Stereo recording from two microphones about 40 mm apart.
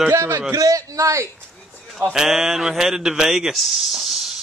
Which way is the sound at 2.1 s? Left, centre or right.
Centre.